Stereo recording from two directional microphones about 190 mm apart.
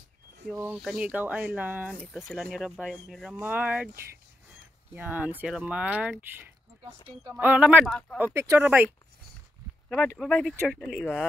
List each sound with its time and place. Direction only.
0.5 s speech: 5° right (ahead or behind)
8.2 s speech: 15° right (ahead or behind)
10.1 s speech: 5° left (ahead or behind)